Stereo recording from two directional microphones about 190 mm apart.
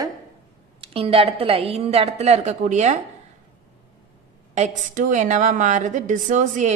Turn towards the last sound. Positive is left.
turn(degrees=-40)  # may be behind; listen again after turning